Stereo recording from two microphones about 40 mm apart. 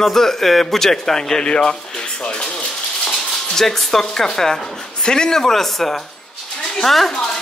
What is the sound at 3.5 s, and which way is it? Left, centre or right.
Speech, centre.